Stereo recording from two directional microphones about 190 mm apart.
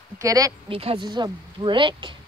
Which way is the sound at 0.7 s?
30° right (ahead or behind).